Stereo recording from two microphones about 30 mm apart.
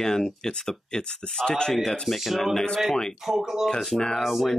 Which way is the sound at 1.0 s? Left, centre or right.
Left.